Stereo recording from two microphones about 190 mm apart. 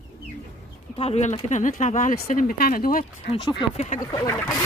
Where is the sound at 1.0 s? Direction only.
35° left (ahead or behind).